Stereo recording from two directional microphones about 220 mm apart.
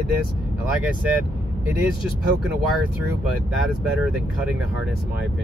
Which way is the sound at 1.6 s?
5° right (ahead or behind).